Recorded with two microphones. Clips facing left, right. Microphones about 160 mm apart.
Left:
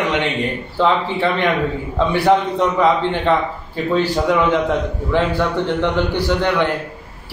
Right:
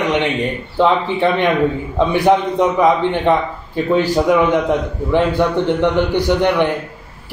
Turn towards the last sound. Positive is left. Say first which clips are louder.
# right 3 dB
turn(degrees=-15)  # may be behind; listen again after turning